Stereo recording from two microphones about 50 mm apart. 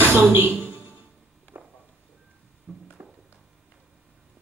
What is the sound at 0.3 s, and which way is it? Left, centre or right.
Speech, right.